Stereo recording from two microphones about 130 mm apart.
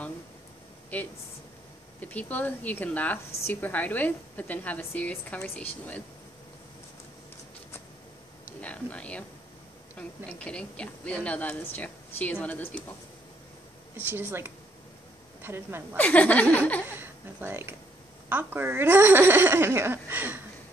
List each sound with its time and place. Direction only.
0.9 s a woman's voice: 10° left (ahead or behind)
8.5 s a woman's voice: 10° left (ahead or behind)
13.9 s speech: 15° right (ahead or behind)
16.0 s a woman's voice: 10° left (ahead or behind)
16.8 s speech: 15° right (ahead or behind)